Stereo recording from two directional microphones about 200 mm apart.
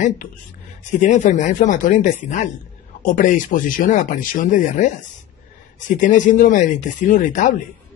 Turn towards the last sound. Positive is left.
turn(degrees=40)  # may be behind; listen again after turning